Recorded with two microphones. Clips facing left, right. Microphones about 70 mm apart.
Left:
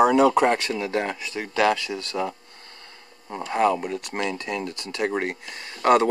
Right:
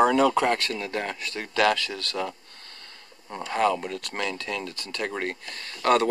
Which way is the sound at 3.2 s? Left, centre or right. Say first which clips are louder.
Left 2 dB; centre.